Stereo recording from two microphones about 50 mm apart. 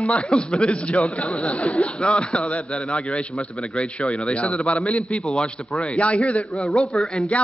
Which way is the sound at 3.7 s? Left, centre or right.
Left.